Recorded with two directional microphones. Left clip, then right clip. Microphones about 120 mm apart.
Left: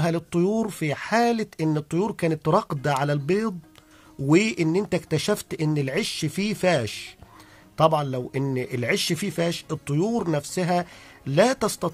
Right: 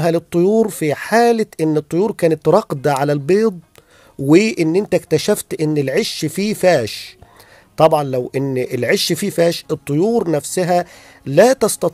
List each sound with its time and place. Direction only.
0.0 s speech: 35° right (ahead or behind)